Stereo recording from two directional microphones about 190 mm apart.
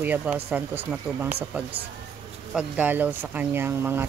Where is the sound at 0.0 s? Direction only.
10° right (ahead or behind).